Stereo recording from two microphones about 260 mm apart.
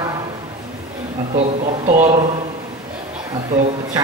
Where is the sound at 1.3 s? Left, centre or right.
Right.